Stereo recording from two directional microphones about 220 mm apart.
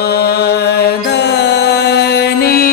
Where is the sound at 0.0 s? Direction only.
45° left (ahead or behind).